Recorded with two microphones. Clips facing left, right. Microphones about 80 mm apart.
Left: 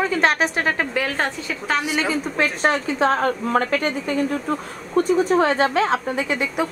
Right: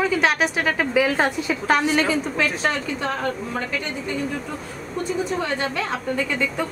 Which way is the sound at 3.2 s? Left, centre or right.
Left.